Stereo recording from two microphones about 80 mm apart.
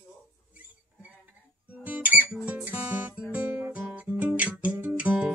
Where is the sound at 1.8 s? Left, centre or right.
Centre.